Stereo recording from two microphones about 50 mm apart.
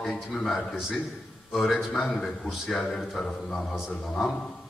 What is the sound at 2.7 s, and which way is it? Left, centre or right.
A man's voice, centre.